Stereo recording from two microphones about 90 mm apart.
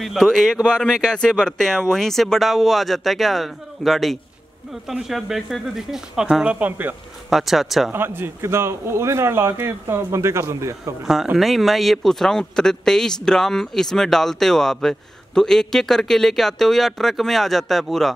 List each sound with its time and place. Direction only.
0.0 s speech: centre (ahead or behind); by 7.0 s 20° right (ahead or behind)
7.2 s speech: centre (ahead or behind)
7.9 s a man's voice: 25° right (ahead or behind)
11.3 s speech: centre (ahead or behind)